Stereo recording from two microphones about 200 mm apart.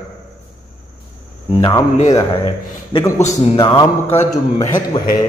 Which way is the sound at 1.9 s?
30° left (ahead or behind).